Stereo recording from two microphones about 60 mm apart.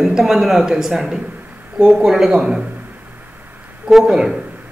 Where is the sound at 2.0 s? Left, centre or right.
Centre.